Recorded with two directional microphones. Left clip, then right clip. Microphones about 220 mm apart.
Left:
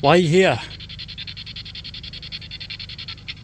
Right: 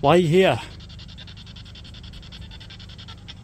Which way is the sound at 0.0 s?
5° right (ahead or behind).